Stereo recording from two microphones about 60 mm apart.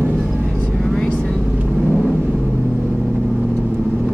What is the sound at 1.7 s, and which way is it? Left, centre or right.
Vehicle, centre.